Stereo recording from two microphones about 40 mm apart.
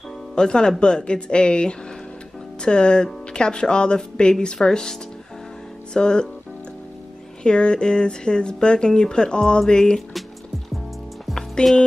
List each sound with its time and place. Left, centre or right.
0.4 s speech: centre
5.9 s speech: left
7.4 s speech: left
11.6 s speech: left